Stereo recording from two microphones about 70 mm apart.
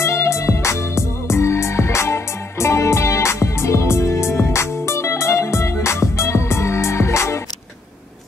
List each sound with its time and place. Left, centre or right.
0.0 s music: left